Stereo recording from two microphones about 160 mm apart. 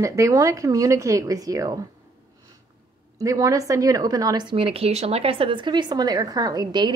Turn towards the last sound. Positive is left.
turn(degrees=-25)  # may be behind; listen again after turning